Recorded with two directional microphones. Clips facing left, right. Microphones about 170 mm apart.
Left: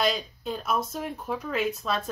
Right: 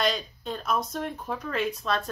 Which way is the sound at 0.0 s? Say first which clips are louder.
Left 1 dB; 5° left (ahead or behind).